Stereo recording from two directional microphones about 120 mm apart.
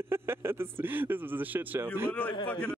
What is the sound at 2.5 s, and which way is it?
Speech, 10° left (ahead or behind).